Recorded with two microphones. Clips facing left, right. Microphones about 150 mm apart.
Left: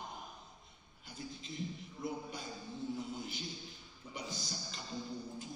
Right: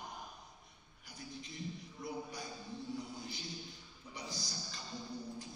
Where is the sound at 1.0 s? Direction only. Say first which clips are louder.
Left 2 dB; 25° left (ahead or behind).